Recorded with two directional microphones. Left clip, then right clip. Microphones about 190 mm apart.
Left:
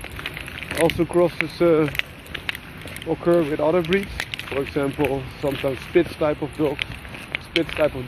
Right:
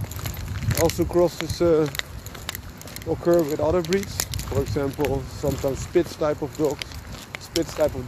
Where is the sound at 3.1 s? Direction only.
25° right (ahead or behind).